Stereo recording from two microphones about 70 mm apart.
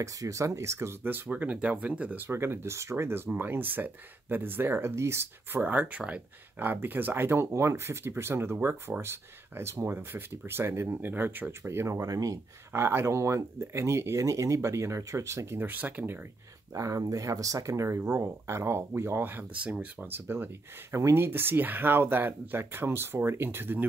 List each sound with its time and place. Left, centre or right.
0.0 s speech: right
1.0 s speech: right
5.6 s speech: right
11.6 s speech: right
12.7 s speech: right
15.6 s speech: right
16.7 s speech: right
19.6 s speech: right